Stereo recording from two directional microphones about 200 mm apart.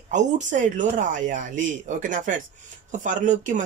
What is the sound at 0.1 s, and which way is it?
Speech, 40° right (ahead or behind).